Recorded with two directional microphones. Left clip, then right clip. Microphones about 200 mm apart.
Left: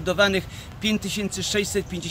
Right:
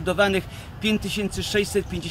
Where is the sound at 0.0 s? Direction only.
15° left (ahead or behind).